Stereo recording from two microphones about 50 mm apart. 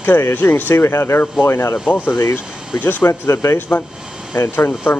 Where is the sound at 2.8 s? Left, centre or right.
Left.